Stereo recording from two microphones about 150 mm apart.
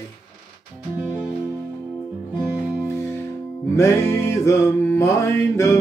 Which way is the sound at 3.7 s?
20° left (ahead or behind).